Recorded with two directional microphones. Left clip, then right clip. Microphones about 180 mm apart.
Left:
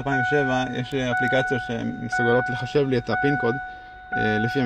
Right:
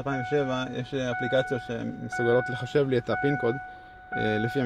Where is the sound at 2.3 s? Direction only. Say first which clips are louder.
Left 1 dB; 5° right (ahead or behind).